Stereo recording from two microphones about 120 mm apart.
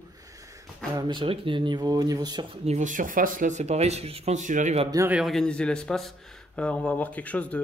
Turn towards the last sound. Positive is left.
turn(degrees=10)  # may be behind; listen again after turning